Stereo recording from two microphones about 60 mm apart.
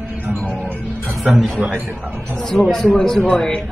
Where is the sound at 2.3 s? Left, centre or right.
Centre.